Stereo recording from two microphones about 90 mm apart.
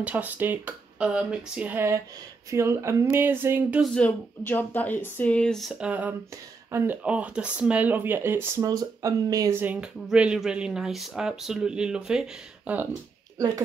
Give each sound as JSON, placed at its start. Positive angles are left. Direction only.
{"t": 0.0, "sound": "speech", "side_deg": -20}
{"t": 2.5, "sound": "speech", "side_deg": -30}
{"t": 4.5, "sound": "speech", "side_deg": 20}
{"t": 5.8, "sound": "speech", "side_deg": -15}
{"t": 6.7, "sound": "speech", "side_deg": -30}
{"t": 7.0, "sound": "speech", "side_deg": -10}
{"t": 8.6, "sound": "speech", "side_deg": -40}
{"t": 9.6, "sound": "speech", "side_deg": -20}